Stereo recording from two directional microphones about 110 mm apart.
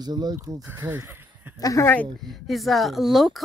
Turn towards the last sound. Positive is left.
turn(degrees=0)  # may be behind; listen again after turning